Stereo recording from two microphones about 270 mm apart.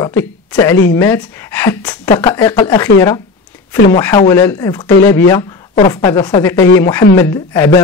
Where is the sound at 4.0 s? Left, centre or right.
Centre.